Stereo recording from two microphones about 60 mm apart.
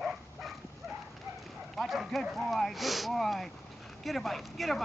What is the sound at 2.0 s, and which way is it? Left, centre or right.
Dog, centre.